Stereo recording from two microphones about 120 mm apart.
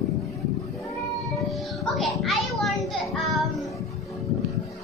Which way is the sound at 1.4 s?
Centre (ahead or behind).